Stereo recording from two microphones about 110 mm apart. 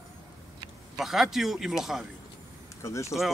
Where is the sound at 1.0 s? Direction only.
5° right (ahead or behind).